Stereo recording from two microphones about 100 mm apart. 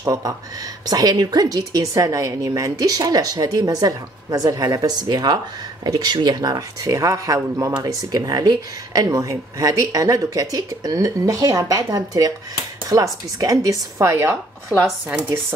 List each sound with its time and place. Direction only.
0.0 s speech: 35° right (ahead or behind)